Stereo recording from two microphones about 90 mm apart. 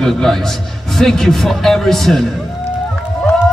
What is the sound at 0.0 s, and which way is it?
Speech, 5° left (ahead or behind).